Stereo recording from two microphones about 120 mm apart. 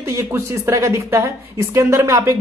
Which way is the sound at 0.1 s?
25° right (ahead or behind).